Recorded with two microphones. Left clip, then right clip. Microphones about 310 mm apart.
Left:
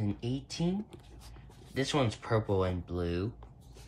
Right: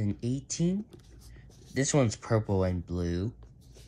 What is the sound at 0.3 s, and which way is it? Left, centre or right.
Speech, centre.